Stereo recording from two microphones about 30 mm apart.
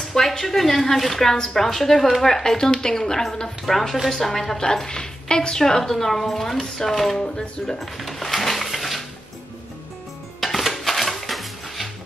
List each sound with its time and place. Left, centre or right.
0.0 s a woman's voice: centre; by 5.6 s left
5.6 s speech: centre
7.2 s speech: left
7.6 s dishes: centre
10.4 s dishes: centre